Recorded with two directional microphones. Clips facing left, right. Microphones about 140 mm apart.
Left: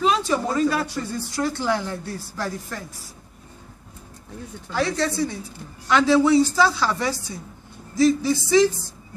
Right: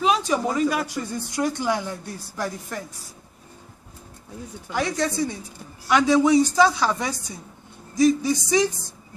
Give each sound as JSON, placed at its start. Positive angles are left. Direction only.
{"t": 0.0, "sound": "speech", "side_deg": -15}
{"t": 4.6, "sound": "a woman's voice", "side_deg": -15}